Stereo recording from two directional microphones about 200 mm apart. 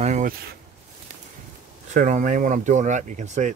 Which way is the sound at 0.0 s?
35° right (ahead or behind).